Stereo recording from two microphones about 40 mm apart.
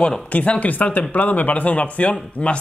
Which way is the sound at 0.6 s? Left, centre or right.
Left.